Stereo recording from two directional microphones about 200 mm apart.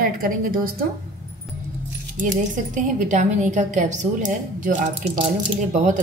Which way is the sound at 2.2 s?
40° right (ahead or behind).